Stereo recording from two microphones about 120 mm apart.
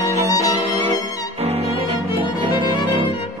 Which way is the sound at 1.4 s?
60° right (ahead or behind).